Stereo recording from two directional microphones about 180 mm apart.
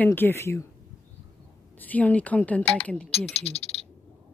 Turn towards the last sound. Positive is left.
turn(degrees=35)  # may be behind; listen again after turning